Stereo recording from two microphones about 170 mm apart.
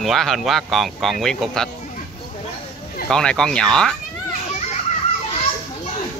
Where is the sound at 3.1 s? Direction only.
5° left (ahead or behind).